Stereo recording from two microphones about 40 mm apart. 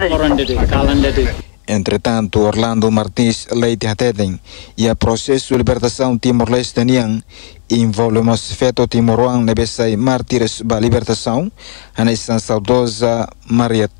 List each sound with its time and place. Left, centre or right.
0.0 s speech: centre